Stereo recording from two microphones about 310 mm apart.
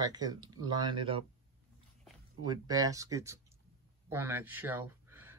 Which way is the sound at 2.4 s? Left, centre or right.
Centre.